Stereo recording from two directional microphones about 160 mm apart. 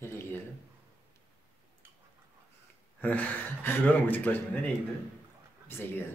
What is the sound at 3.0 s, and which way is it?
Speech, 10° left (ahead or behind).